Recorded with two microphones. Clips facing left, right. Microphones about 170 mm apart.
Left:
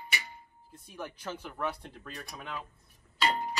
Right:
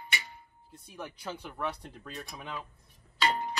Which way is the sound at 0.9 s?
10° right (ahead or behind).